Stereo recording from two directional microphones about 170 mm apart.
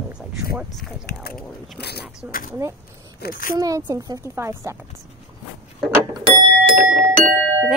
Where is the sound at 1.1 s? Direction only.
75° left (ahead or behind).